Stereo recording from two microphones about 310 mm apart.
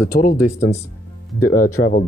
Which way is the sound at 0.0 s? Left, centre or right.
Left.